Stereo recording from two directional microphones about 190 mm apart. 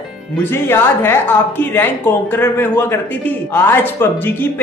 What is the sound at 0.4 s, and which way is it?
A man's voice, 10° left (ahead or behind).